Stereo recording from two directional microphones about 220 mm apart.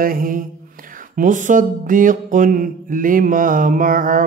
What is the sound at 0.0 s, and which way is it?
Music, 40° right (ahead or behind).